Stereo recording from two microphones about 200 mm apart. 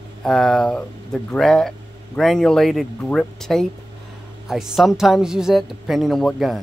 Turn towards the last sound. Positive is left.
turn(degrees=0)  # may be behind; listen again after turning